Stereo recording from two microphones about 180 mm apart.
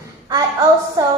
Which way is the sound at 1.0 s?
20° right (ahead or behind).